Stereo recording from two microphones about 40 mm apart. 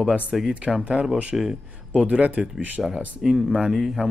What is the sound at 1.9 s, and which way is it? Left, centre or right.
Speech, right.